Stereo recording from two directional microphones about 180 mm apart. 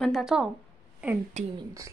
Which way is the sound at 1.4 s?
40° right (ahead or behind).